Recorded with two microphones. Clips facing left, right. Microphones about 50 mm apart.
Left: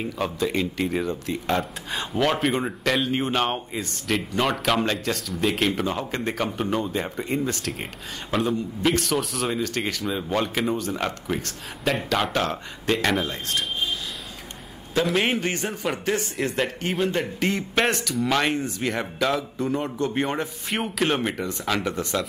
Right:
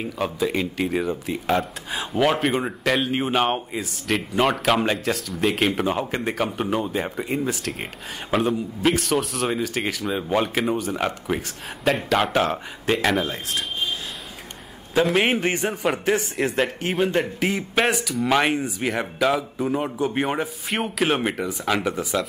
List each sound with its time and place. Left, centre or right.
0.0 s speech: centre
15.0 s speech: centre
17.0 s speech: centre